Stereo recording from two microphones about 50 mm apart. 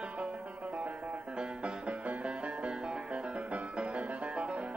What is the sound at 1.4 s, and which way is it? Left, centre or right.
Music, right.